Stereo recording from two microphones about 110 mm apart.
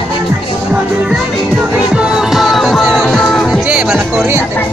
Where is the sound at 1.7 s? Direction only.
10° right (ahead or behind).